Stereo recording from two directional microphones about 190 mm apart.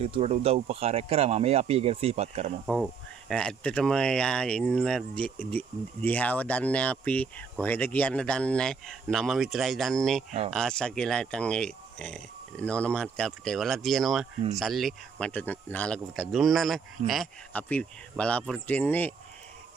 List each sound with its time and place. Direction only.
0.0 s speech: 35° right (ahead or behind)
2.6 s speech: centre (ahead or behind)